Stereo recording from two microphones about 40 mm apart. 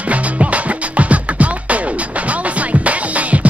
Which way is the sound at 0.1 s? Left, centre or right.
Right.